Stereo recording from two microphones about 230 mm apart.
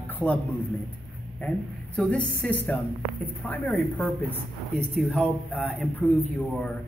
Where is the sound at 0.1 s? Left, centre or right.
Centre.